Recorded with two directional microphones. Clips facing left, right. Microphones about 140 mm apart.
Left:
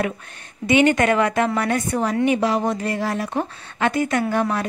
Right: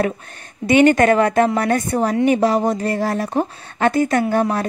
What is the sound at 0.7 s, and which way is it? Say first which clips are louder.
A woman's voice: right 4 dB; 45° right (ahead or behind).